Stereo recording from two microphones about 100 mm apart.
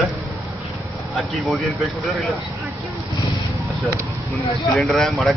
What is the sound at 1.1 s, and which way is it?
Speech, centre (ahead or behind).